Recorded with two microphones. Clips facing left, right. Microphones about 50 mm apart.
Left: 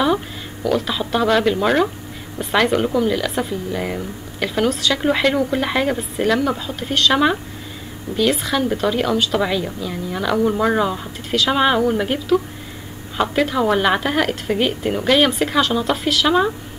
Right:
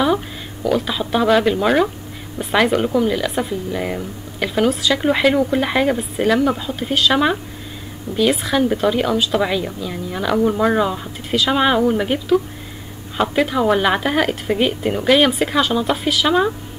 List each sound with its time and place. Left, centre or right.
0.0 s speech: centre